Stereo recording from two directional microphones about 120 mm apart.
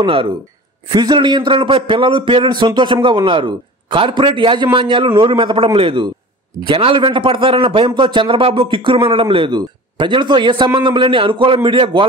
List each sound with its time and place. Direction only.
0.0 s a man's voice: 45° right (ahead or behind)
0.8 s a man's voice: 35° right (ahead or behind)